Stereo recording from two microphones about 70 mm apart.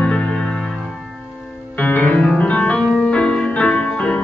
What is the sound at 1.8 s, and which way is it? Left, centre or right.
Music, left.